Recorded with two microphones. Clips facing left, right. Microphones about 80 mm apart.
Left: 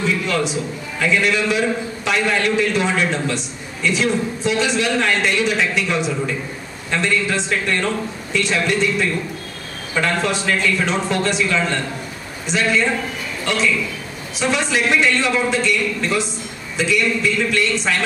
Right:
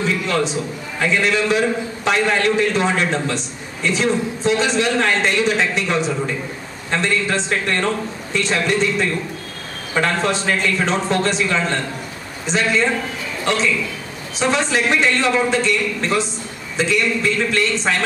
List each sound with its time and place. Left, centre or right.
0.9 s a man's voice: right
14.4 s a man's voice: right